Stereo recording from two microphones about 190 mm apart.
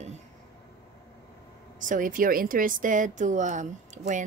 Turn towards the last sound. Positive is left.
turn(degrees=-40)  # may be behind; listen again after turning